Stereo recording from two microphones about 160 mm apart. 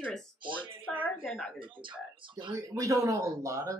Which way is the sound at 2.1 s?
30° right (ahead or behind).